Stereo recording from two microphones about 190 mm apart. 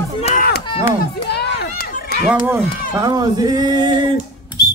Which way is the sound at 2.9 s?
20° right (ahead or behind).